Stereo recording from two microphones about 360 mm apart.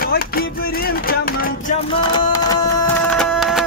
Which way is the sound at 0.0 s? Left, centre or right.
Left.